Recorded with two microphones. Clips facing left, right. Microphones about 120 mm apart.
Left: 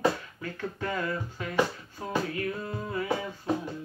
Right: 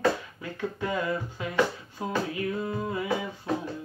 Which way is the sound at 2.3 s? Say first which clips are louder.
Right 3 dB; 15° right (ahead or behind).